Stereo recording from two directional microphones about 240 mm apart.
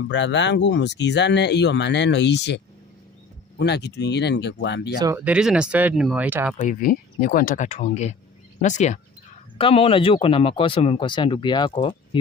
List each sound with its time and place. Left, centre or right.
0.1 s speech: left
4.9 s speech: centre
6.6 s speech: left; by 12.2 s centre